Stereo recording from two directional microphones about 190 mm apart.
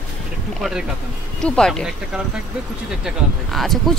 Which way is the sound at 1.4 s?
5° left (ahead or behind).